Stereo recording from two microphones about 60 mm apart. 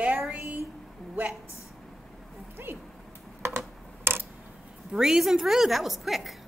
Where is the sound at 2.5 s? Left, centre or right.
Right.